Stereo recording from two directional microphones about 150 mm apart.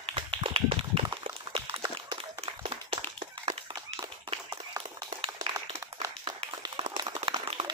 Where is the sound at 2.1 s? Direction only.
35° right (ahead or behind).